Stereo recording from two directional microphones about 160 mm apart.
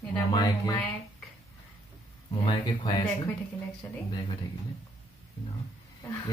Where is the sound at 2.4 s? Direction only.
30° left (ahead or behind).